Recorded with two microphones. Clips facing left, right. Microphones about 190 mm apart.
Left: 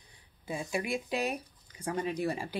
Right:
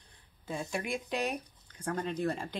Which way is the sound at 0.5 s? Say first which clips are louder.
Left 2 dB; 5° left (ahead or behind).